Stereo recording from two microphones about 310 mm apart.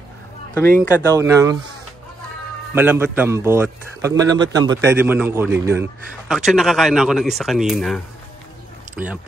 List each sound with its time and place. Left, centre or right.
0.8 s a man's voice: centre
2.7 s a man's voice: centre